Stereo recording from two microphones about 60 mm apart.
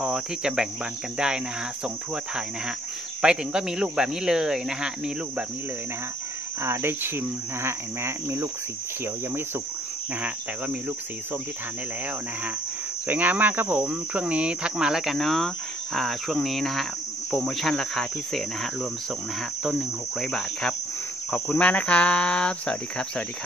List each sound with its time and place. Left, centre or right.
0.0 s speech: centre
3.2 s speech: centre
6.6 s cricket: right
13.1 s cricket: right; by 15.1 s centre
15.1 s cricket: centre
21.5 s speech: left